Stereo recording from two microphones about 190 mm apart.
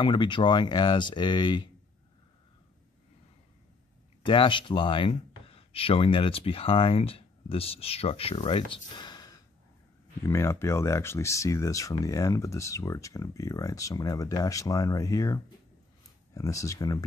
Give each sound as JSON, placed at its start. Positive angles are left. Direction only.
{"t": 0.0, "sound": "speech", "side_deg": 25}
{"t": 4.2, "sound": "speech", "side_deg": 25}